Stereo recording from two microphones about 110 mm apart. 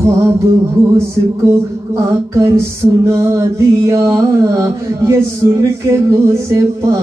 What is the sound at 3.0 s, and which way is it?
Mantra, 30° right (ahead or behind).